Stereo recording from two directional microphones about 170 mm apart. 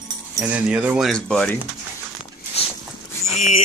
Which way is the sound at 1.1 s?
5° left (ahead or behind).